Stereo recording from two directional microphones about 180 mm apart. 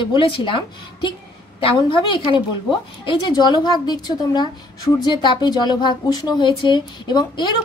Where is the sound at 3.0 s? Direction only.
25° left (ahead or behind).